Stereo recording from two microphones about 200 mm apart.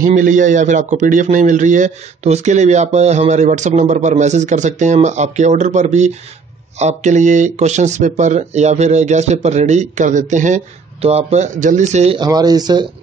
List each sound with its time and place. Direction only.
0.0 s a man's voice: 40° right (ahead or behind)
12.2 s speech: 20° right (ahead or behind)